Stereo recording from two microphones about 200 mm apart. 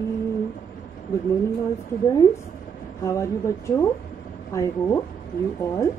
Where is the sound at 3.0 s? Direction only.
15° left (ahead or behind).